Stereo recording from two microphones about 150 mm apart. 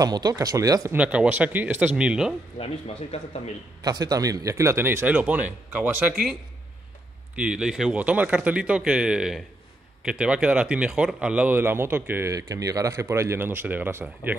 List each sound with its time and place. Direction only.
0.0 s speech: 25° right (ahead or behind)
0.9 s speech: 10° right (ahead or behind)
3.1 s speech: 45° left (ahead or behind)
3.8 s speech: 25° right (ahead or behind)
7.3 s speech: 5° right (ahead or behind)